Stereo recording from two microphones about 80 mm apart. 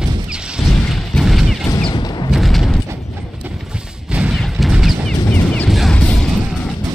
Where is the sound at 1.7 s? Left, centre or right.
Left.